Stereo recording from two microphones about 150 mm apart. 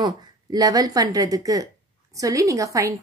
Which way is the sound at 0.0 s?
25° right (ahead or behind).